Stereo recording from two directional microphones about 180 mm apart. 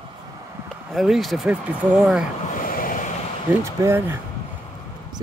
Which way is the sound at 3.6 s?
15° right (ahead or behind).